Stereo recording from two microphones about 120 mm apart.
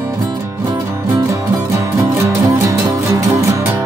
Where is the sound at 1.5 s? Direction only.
25° right (ahead or behind).